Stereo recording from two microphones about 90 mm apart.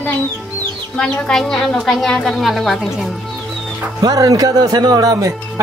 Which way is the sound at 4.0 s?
40° right (ahead or behind).